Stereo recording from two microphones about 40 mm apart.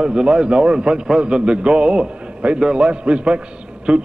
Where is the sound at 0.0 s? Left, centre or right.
Right.